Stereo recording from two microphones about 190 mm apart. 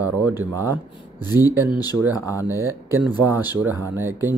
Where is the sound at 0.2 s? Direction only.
10° right (ahead or behind).